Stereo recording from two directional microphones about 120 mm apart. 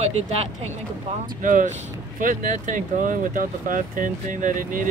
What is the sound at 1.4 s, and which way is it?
Speech, 90° right.